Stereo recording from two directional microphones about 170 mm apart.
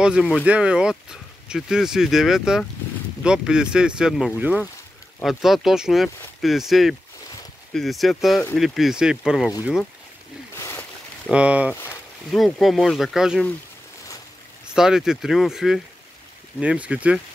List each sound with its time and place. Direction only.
0.0 s speech: 5° right (ahead or behind)
10.5 s boat: 15° left (ahead or behind)
11.2 s speech: 5° right (ahead or behind)
11.7 s a sound: 15° left (ahead or behind)
12.3 s speech: centre (ahead or behind)
14.7 s speech: 5° right (ahead or behind)